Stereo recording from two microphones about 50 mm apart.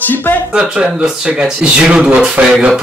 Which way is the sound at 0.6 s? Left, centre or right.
Centre.